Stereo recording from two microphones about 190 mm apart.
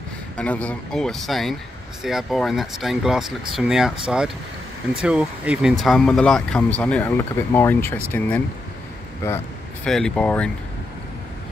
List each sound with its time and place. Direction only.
0.4 s speech: 5° left (ahead or behind)
5.0 s speech: 5° right (ahead or behind); by 9.4 s 15° left (ahead or behind)
9.8 s speech: 5° left (ahead or behind)